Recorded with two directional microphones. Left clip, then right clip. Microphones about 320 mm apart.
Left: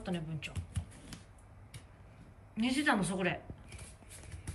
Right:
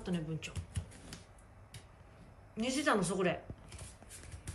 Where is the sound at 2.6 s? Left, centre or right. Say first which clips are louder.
Left 1 dB; centre.